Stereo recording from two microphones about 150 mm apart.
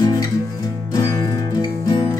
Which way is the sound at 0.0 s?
25° left (ahead or behind).